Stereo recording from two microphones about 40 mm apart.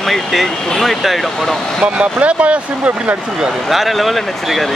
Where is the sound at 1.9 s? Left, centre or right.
Right.